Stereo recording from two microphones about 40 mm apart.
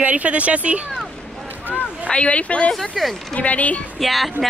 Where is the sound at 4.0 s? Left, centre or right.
Centre.